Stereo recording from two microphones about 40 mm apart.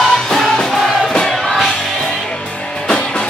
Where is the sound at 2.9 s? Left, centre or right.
Left.